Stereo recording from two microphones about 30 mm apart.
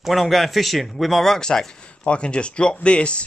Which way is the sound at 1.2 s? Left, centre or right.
Centre.